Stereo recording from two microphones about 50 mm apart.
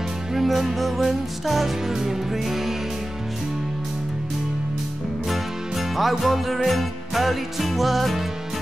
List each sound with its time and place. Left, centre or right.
0.3 s music: centre
5.3 s music: centre